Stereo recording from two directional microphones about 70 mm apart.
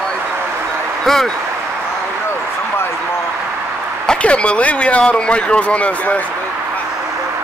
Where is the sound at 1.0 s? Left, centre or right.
Centre.